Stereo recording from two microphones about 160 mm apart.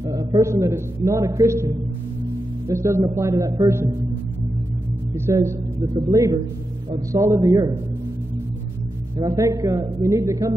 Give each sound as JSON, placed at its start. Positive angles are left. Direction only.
{"t": 0.0, "sound": "a man's voice", "side_deg": -20}
{"t": 2.7, "sound": "a man's voice", "side_deg": -20}
{"t": 5.1, "sound": "a man's voice", "side_deg": -15}
{"t": 9.2, "sound": "a man's voice", "side_deg": -20}